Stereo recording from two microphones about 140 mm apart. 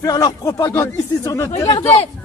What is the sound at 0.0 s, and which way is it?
Speech, 25° left (ahead or behind).